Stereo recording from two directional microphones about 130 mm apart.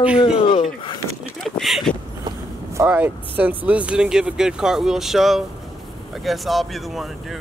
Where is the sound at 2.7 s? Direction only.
15° right (ahead or behind).